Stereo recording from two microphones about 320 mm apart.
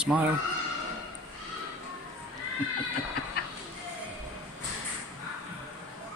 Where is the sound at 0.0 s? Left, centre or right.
Centre.